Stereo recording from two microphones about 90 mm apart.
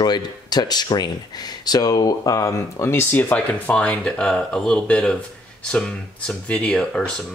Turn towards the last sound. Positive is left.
turn(degrees=10)  # may be behind; listen again after turning